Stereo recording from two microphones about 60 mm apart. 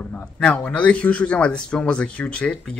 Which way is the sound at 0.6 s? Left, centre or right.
Left.